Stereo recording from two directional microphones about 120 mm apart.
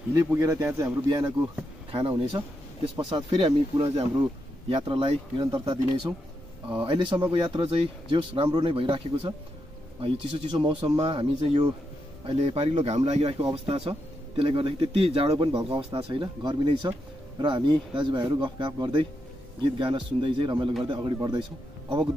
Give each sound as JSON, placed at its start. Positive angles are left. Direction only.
{"t": 0.4, "sound": "a man's voice", "side_deg": -20}
{"t": 1.0, "sound": "speech", "side_deg": -35}
{"t": 1.9, "sound": "speech", "side_deg": -45}
{"t": 5.4, "sound": "speech", "side_deg": -35}
{"t": 12.4, "sound": "speech", "side_deg": -60}